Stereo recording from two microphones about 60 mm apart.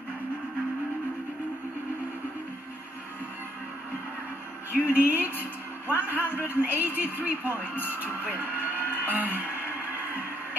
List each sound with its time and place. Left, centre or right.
4.7 s a woman's voice: right